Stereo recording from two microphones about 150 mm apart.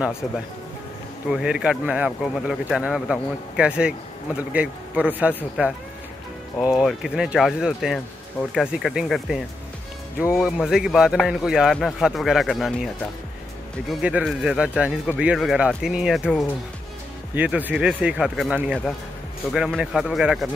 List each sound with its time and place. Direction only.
1.3 s speech: 5° right (ahead or behind)
6.8 s a man's voice: 5° right (ahead or behind)
10.4 s a man's voice: 5° right (ahead or behind)